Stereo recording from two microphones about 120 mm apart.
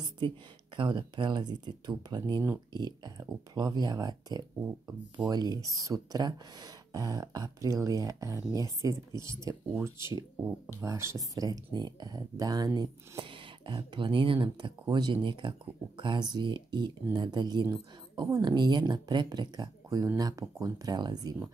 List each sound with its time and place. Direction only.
0.7 s speech: 40° right (ahead or behind)